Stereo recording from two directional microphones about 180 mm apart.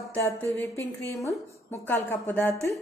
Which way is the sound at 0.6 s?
10° left (ahead or behind).